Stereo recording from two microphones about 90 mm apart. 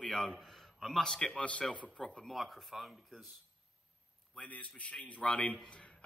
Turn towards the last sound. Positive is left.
turn(degrees=10)  # may be behind; listen again after turning